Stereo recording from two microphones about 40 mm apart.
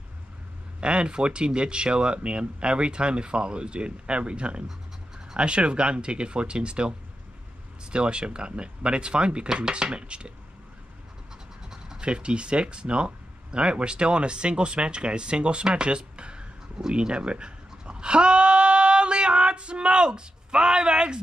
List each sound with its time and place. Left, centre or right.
0.7 s speech: right
12.0 s speech: right